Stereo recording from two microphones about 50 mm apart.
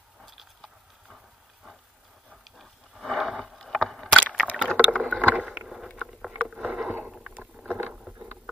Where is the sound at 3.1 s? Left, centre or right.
Centre.